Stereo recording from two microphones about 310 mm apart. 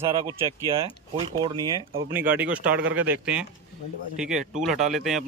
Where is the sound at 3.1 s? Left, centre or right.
Centre.